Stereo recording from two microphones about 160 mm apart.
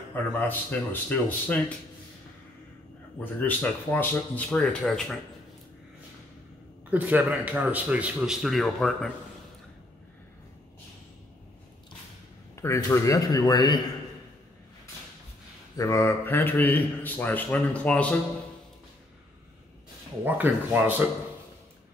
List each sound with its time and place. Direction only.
0.1 s a man's voice: 10° left (ahead or behind)
3.3 s a man's voice: 10° left (ahead or behind)
6.9 s speech: 10° right (ahead or behind)
12.5 s speech: 15° left (ahead or behind)
15.8 s a man's voice: 20° left (ahead or behind)
20.2 s speech: 10° right (ahead or behind)